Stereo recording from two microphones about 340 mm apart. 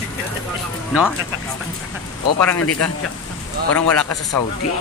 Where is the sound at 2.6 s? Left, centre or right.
Left.